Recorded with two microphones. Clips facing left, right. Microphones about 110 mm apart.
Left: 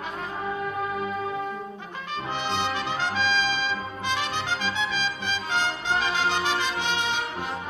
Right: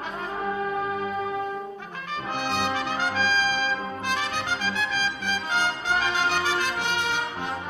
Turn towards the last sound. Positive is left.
turn(degrees=15)  # may be behind; listen again after turning